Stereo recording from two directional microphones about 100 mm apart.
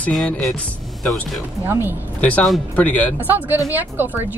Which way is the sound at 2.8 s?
15° left (ahead or behind).